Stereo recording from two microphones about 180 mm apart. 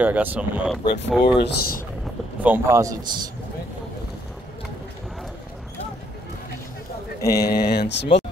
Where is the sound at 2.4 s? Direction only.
15° right (ahead or behind).